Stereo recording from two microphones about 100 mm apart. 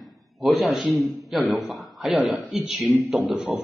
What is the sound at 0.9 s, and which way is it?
A man's voice, centre (ahead or behind).